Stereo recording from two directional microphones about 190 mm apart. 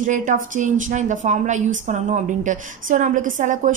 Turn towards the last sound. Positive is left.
turn(degrees=-40)  # may be behind; listen again after turning